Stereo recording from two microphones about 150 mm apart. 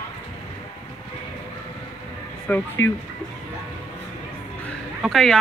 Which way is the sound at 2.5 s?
10° left (ahead or behind).